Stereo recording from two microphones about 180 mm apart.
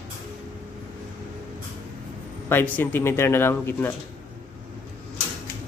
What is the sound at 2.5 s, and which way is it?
Speech, 10° left (ahead or behind).